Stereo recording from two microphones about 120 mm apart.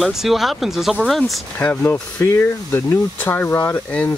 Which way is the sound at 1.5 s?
15° left (ahead or behind).